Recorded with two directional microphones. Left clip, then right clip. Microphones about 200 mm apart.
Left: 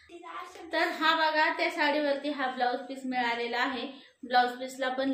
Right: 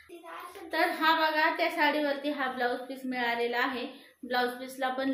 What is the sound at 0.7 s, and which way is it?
A woman's voice, 10° right (ahead or behind).